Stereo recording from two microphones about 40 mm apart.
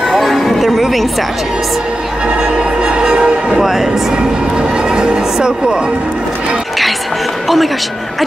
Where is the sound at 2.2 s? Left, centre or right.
Centre.